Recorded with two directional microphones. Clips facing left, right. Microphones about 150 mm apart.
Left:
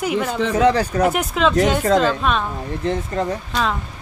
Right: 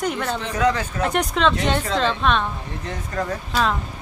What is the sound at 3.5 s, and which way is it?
Speech, centre (ahead or behind).